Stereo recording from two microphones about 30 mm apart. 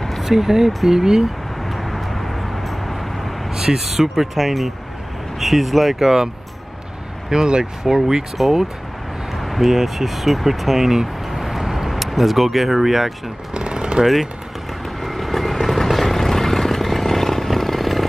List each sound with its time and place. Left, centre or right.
0.2 s speech: centre
1.7 s vehicle: centre
3.5 s speech: centre
3.9 s speech: centre
7.2 s speech: right
8.4 s speech: centre
9.4 s a sound: centre
9.7 s speech: centre
13.6 s a sound: right
15.0 s vehicle: centre